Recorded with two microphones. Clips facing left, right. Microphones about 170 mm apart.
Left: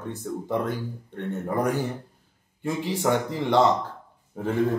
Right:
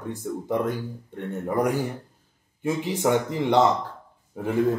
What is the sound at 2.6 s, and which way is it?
Speech, 15° right (ahead or behind).